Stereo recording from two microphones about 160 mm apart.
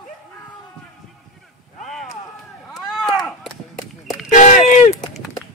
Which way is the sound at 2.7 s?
Centre (ahead or behind).